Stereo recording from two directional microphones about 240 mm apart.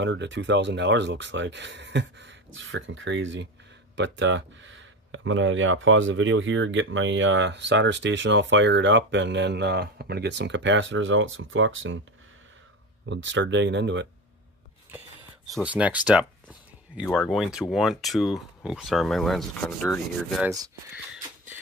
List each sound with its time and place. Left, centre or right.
0.0 s speech: right
13.0 s speech: right
15.5 s speech: centre
20.4 s speech: centre